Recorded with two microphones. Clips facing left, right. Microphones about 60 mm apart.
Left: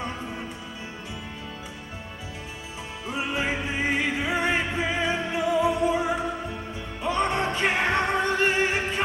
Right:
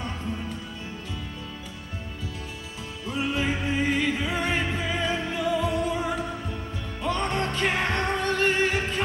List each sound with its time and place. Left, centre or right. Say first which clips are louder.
3.1 s music: right 1 dB; left